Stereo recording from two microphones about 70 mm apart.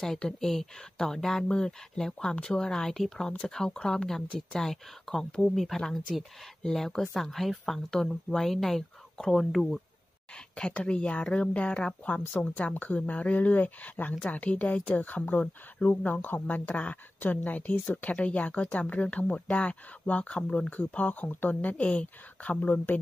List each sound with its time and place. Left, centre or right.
0.0 s speech: centre
10.5 s a woman's voice: centre